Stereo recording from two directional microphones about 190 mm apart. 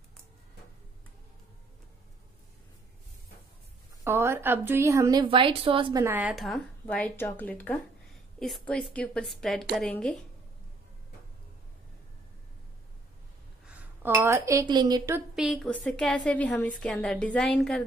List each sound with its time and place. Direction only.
4.0 s a woman's voice: 15° right (ahead or behind)
6.0 s a woman's voice: 10° right (ahead or behind)
6.3 s a woman's voice: centre (ahead or behind)
13.7 s speech: 10° right (ahead or behind)
15.3 s a woman's voice: centre (ahead or behind)